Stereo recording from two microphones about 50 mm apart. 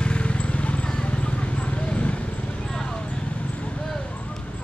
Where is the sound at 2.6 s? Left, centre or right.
Centre.